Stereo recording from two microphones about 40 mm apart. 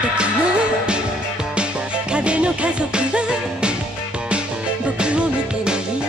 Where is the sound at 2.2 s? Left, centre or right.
Right.